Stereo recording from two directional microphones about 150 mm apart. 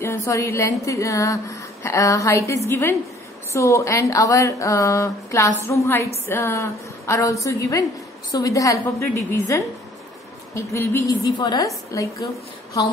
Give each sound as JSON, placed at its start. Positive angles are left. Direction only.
{"t": 0.0, "sound": "a woman's voice", "side_deg": 15}